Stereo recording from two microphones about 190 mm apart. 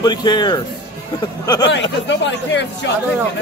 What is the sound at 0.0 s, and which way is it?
A man's voice, 20° left (ahead or behind).